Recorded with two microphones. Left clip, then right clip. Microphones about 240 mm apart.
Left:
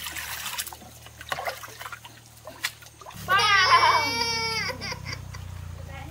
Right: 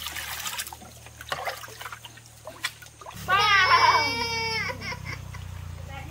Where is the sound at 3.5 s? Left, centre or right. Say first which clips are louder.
Left 1 dB; centre.